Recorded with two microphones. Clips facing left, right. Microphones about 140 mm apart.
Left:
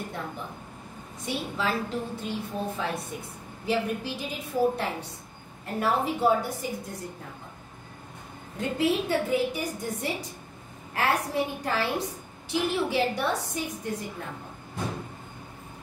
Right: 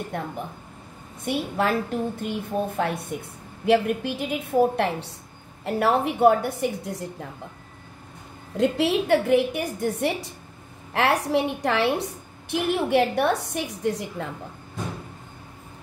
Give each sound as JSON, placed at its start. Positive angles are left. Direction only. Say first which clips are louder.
{"t": 0.1, "sound": "a woman's voice", "louder": "right 5 dB", "side_deg": -60}
{"t": 8.5, "sound": "a woman's voice", "louder": "right 5 dB", "side_deg": -80}
{"t": 10.9, "sound": "a woman's voice", "louder": "right 5 dB", "side_deg": -80}